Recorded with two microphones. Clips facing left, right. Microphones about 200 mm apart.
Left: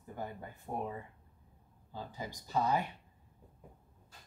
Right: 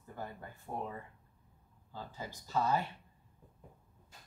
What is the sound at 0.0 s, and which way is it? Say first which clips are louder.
Speech: left 2 dB; 15° left (ahead or behind).